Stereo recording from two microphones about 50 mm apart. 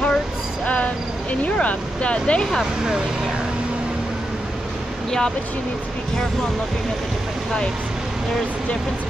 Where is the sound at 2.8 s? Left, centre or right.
Centre.